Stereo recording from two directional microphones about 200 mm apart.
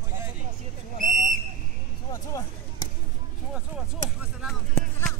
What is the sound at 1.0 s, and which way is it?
Whistle, 40° right (ahead or behind).